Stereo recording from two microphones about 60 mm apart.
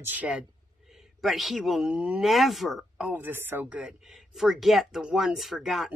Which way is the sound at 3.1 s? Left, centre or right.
Right.